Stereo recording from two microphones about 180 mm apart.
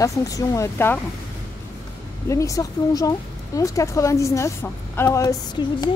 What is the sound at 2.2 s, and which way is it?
Speech, 15° left (ahead or behind).